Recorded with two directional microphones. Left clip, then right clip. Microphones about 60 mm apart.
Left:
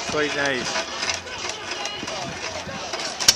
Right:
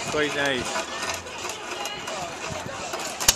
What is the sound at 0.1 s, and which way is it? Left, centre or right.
Speech, left.